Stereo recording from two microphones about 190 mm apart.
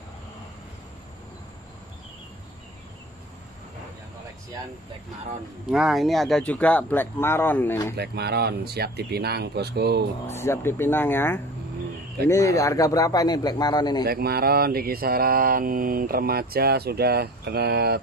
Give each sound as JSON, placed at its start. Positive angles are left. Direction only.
{"t": 5.7, "sound": "speech", "side_deg": 0}
{"t": 8.0, "sound": "speech", "side_deg": -60}
{"t": 10.2, "sound": "a man's voice", "side_deg": 15}
{"t": 14.0, "sound": "mantra", "side_deg": -55}